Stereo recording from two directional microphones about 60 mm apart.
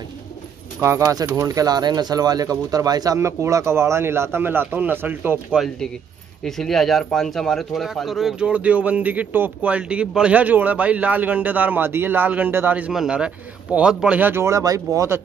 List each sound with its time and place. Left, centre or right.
0.7 s speech: right
3.2 s speech: right
6.4 s speech: centre
8.4 s a man's voice: right
13.1 s a man's voice: centre
14.6 s speech: right